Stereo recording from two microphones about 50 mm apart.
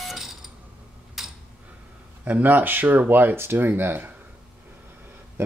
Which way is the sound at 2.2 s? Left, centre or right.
Right.